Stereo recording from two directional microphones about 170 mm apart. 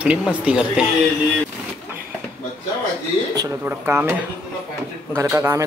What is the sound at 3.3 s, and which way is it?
Speech, 15° right (ahead or behind).